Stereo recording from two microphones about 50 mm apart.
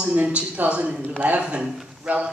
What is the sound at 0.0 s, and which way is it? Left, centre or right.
A man's voice, right.